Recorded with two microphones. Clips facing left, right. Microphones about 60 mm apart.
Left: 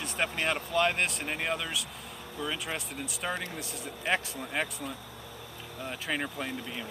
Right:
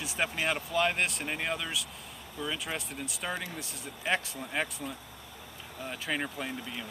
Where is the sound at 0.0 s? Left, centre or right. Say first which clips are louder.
Left 1 dB; centre.